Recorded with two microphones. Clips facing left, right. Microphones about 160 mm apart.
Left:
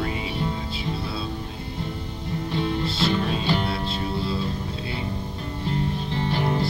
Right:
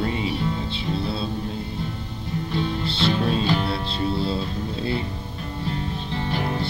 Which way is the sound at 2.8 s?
30° right (ahead or behind).